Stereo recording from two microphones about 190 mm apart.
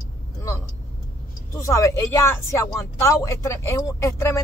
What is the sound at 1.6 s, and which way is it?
A woman's voice, 15° left (ahead or behind).